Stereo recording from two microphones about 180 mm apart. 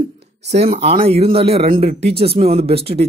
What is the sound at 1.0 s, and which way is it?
Speech, 35° right (ahead or behind).